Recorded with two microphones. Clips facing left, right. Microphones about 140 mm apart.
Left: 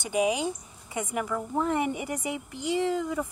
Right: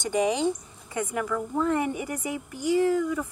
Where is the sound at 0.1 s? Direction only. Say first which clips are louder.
Right 2 dB; 10° left (ahead or behind).